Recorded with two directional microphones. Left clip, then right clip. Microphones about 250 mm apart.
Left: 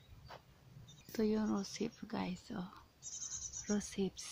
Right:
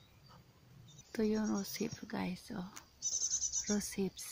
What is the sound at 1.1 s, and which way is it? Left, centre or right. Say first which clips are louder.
Speech: right 1 dB; centre.